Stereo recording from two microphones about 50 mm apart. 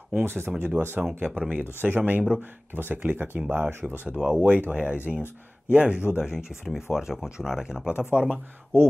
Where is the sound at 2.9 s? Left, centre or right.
Right.